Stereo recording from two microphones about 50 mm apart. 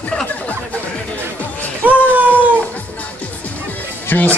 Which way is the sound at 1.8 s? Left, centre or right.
Right.